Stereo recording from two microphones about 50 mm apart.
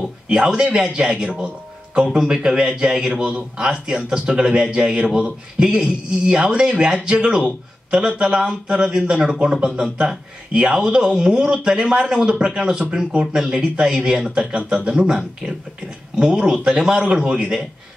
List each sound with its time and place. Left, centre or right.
0.3 s a man's voice: centre